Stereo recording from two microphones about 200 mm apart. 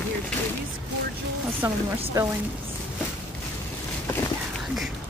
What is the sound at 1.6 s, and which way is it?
Speech, 15° right (ahead or behind).